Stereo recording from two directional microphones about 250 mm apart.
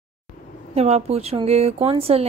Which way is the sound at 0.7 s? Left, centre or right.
Right.